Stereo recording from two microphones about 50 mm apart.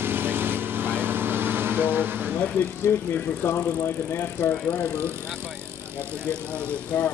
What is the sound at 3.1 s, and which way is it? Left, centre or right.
Speech, left.